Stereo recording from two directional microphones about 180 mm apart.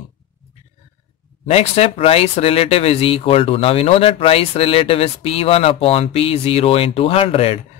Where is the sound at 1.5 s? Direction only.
35° left (ahead or behind).